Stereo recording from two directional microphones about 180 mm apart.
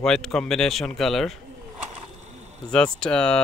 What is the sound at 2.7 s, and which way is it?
Speech, 5° left (ahead or behind).